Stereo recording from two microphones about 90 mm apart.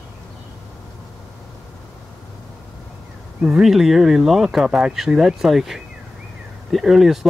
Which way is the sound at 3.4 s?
5° right (ahead or behind).